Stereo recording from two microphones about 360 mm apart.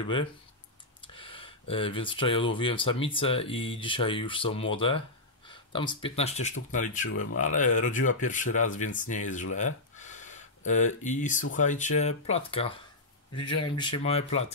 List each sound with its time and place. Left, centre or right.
0.0 s speech: centre
9.9 s a sound: centre
11.5 s speech: left
13.9 s speech: centre